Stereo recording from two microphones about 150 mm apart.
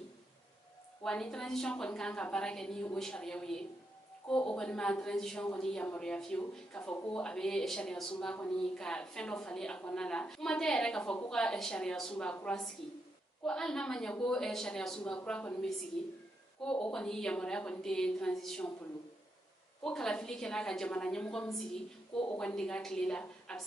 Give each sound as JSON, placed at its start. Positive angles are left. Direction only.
{"t": 1.0, "sound": "a woman's voice", "side_deg": 5}
{"t": 13.5, "sound": "a woman's voice", "side_deg": 5}
{"t": 19.8, "sound": "a woman's voice", "side_deg": 5}